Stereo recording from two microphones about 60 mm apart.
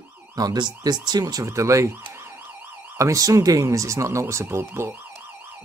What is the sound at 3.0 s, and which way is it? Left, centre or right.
Speech, right.